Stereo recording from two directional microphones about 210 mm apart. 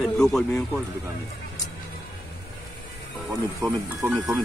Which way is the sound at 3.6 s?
15° right (ahead or behind).